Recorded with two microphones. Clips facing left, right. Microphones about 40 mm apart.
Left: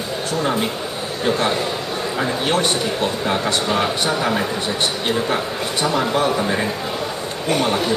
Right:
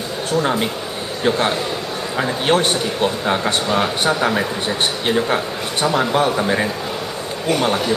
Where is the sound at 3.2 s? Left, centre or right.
Centre.